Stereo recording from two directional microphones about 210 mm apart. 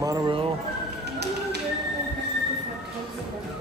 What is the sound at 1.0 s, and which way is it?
Tap, 50° right (ahead or behind).